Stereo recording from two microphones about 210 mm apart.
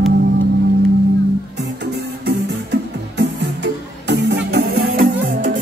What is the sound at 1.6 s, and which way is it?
Music, 55° right (ahead or behind).